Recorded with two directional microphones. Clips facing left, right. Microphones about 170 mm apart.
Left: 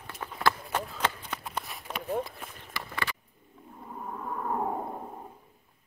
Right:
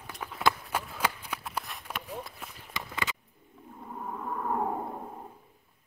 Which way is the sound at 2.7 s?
20° right (ahead or behind).